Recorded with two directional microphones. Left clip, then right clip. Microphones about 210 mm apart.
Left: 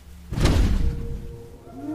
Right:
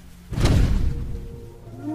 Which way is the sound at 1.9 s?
Centre (ahead or behind).